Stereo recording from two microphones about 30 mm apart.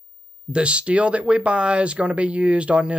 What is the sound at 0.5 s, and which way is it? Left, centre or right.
Speech, right.